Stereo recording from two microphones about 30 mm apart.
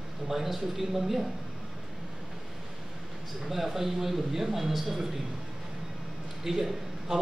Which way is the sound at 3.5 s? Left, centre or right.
Centre.